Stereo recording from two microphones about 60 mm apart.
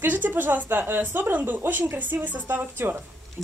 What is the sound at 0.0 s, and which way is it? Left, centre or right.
Speech, right.